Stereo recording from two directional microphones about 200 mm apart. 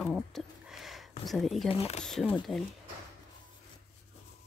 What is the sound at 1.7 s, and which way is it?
Speech, 30° left (ahead or behind).